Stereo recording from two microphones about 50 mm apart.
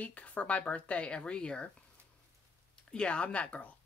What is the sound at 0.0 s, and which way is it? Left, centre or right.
Speech, left.